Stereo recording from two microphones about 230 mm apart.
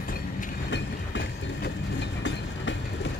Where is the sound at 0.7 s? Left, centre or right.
Left.